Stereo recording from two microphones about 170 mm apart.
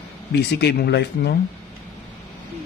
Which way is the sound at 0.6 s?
75° left (ahead or behind).